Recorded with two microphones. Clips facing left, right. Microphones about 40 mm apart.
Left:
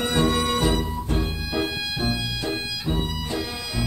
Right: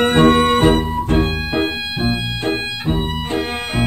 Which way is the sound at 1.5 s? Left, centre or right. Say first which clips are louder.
Right 4 dB; right.